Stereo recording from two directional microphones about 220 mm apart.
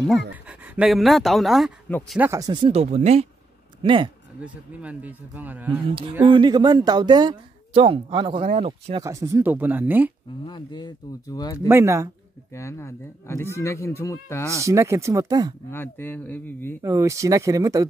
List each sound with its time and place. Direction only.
0.1 s speech: 5° right (ahead or behind)
2.1 s speech: 10° right (ahead or behind)
4.4 s speech: 5° right (ahead or behind)
5.9 s speech: 25° right (ahead or behind)
9.0 s speech: 15° right (ahead or behind)
10.4 s speech: 20° left (ahead or behind)
11.6 s speech: 10° right (ahead or behind)
12.5 s speech: 10° left (ahead or behind)
14.5 s speech: 15° right (ahead or behind)
15.7 s speech: 10° left (ahead or behind)
16.8 s speech: 15° right (ahead or behind)